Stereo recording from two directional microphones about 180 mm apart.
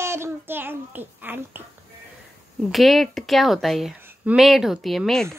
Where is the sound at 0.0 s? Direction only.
15° right (ahead or behind).